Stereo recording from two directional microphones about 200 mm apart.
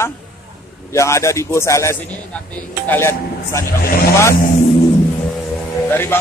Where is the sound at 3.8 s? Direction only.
45° left (ahead or behind).